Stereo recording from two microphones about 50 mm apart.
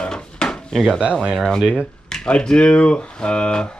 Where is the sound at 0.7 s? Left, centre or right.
Centre.